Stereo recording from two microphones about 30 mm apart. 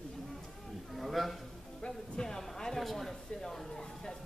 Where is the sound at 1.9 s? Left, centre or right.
Centre.